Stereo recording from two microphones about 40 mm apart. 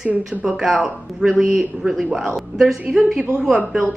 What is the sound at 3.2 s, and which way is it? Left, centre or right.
Speech, centre.